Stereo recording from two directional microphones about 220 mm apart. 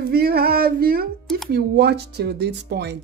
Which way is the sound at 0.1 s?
45° right (ahead or behind).